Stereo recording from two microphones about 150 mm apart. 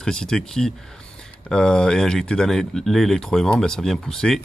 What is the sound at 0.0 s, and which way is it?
Speech, 5° left (ahead or behind).